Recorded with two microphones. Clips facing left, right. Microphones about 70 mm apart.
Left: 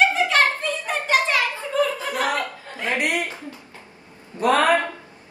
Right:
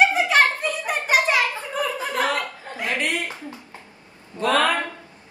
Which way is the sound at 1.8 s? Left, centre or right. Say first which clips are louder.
Left 5 dB; centre.